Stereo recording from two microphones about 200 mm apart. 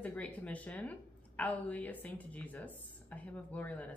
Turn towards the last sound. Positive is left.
turn(degrees=5)  # may be behind; listen again after turning